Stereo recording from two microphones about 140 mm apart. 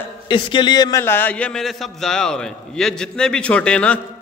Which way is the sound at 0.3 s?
35° left (ahead or behind).